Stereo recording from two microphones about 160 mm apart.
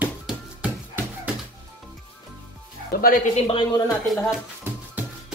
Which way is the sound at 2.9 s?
60° left (ahead or behind).